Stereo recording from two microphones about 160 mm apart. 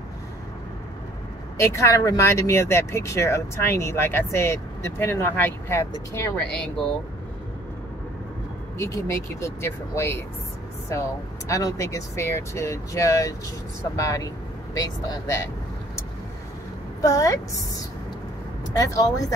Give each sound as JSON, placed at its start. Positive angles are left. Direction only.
{"t": 1.6, "sound": "speech", "side_deg": 20}
{"t": 8.7, "sound": "speech", "side_deg": 20}
{"t": 17.0, "sound": "speech", "side_deg": 20}